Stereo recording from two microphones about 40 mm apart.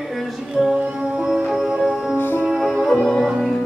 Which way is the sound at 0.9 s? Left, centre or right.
Centre.